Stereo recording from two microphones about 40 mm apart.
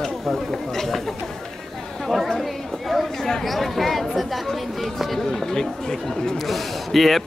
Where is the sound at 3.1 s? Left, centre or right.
Centre.